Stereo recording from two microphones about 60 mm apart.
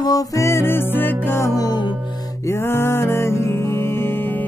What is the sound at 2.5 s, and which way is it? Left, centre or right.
Music, left.